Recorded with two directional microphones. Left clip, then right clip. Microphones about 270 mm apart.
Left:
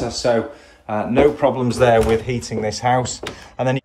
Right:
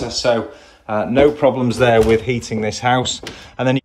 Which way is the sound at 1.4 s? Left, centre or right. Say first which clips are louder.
Right 1 dB; centre.